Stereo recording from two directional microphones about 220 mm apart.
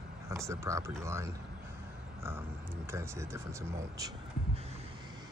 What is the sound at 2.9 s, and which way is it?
Speech, 10° right (ahead or behind).